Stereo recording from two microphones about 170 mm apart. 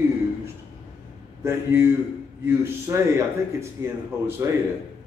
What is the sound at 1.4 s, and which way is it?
A man's voice, 15° right (ahead or behind).